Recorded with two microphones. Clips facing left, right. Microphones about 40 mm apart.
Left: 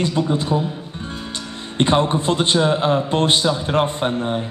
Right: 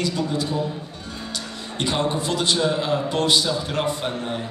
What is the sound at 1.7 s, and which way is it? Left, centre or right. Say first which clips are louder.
A man's voice: left 6 dB; left.